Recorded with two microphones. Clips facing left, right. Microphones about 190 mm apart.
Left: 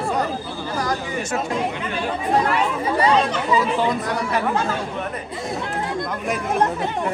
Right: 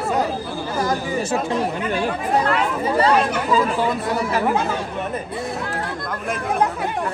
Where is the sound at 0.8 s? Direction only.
30° right (ahead or behind).